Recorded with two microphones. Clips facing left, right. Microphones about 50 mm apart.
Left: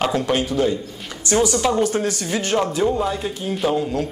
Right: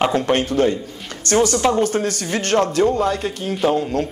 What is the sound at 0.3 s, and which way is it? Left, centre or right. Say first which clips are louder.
A man's voice: right 2 dB; right.